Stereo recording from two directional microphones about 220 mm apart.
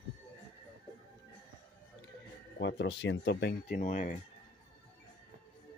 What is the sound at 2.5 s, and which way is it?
Speech, 55° left (ahead or behind).